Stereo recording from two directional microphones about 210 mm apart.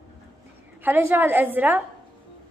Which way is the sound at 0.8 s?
10° right (ahead or behind).